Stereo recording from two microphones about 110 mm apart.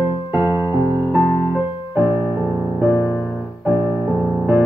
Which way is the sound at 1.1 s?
40° left (ahead or behind).